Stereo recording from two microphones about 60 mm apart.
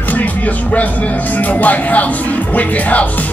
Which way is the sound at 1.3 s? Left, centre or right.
Left.